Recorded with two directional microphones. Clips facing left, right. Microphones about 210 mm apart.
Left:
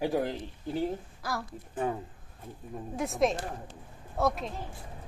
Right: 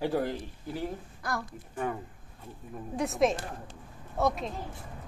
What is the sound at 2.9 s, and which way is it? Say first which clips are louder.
A child's voice: right 1 dB; centre (ahead or behind).